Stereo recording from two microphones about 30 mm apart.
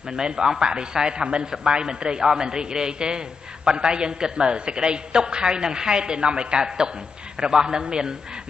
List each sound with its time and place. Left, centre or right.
0.1 s a woman's voice: right